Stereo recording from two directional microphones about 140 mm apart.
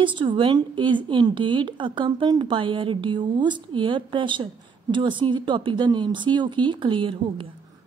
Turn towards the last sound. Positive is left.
turn(degrees=-40)  # may be behind; listen again after turning